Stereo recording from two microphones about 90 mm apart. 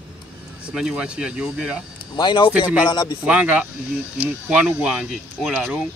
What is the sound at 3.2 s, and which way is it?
Speech, 15° right (ahead or behind).